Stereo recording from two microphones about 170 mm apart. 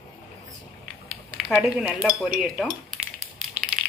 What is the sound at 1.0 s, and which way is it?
Speech, centre (ahead or behind).